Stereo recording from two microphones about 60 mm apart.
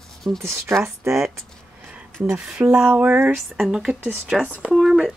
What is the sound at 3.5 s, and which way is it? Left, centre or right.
Speech, centre.